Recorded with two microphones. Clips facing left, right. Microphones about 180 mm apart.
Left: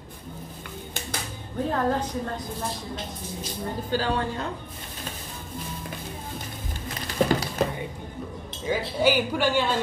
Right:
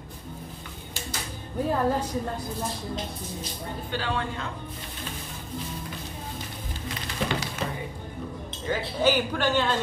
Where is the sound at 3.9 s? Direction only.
40° left (ahead or behind).